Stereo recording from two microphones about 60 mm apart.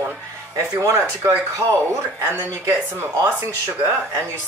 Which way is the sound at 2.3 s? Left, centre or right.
Right.